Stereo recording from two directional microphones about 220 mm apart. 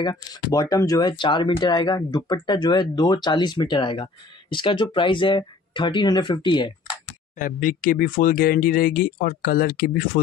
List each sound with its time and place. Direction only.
0.0 s speech: 20° left (ahead or behind)
7.3 s speech: 40° left (ahead or behind)